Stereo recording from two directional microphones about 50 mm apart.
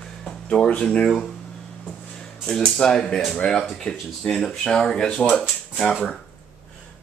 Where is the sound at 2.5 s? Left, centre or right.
Centre.